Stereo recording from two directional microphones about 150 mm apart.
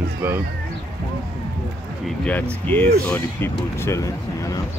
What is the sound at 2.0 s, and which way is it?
Speech, 10° left (ahead or behind).